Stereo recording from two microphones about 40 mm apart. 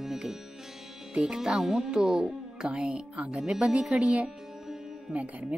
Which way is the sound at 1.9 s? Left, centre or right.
Centre.